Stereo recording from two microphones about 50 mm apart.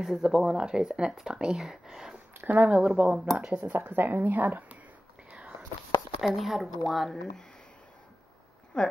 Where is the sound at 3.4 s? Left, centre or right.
Centre.